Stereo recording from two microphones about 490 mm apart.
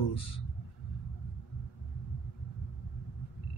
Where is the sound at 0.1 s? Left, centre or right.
Left.